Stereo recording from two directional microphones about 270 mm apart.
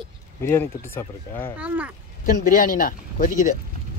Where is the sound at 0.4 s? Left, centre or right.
Centre.